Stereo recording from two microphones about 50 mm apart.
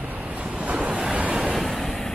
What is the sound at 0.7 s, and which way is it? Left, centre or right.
Waves, centre.